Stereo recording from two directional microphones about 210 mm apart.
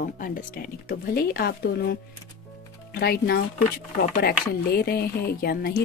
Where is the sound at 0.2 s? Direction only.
40° left (ahead or behind).